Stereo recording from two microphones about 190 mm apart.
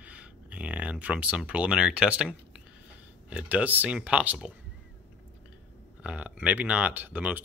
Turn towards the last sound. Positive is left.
turn(degrees=-10)  # may be behind; listen again after turning